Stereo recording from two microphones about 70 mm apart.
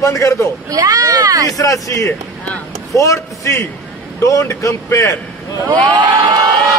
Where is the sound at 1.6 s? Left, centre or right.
Left.